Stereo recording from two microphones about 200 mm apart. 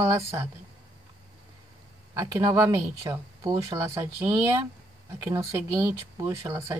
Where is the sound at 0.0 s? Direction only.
15° right (ahead or behind).